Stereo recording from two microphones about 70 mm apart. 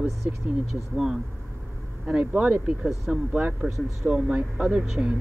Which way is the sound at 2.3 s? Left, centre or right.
Centre.